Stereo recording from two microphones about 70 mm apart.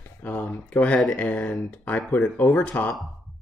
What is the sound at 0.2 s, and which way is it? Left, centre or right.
Speech, left.